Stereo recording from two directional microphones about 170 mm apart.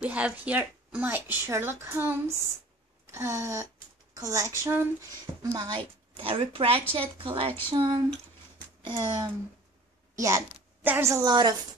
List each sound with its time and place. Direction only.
0.0 s a woman's voice: 10° right (ahead or behind); by 9.1 s 25° right (ahead or behind)
10.1 s a woman's voice: 15° right (ahead or behind)